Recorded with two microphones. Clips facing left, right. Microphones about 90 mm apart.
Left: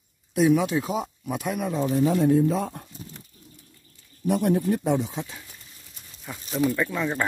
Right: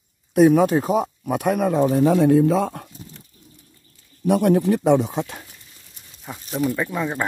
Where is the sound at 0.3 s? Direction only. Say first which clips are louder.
Right 6 dB; 50° right (ahead or behind); by 2.9 s 90° right.